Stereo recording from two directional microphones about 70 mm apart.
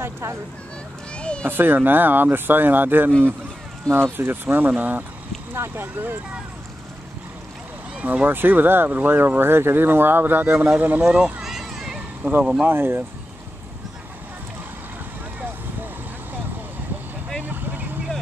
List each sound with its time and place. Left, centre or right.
0.0 s speech: right
1.1 s cat: centre
1.5 s speech: right
5.5 s speech: right
8.0 s speech: right
11.1 s speech: centre
11.4 s a sound: centre
12.2 s speech: right
17.4 s vehicle: right